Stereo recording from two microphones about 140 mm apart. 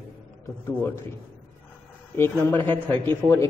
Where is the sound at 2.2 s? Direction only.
15° left (ahead or behind).